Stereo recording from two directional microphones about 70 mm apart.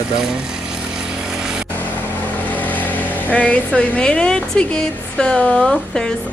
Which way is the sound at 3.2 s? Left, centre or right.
Left.